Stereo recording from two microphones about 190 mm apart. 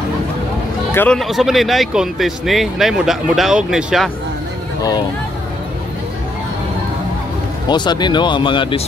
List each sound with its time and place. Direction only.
0.9 s speech: 5° left (ahead or behind)
7.6 s speech: 25° left (ahead or behind)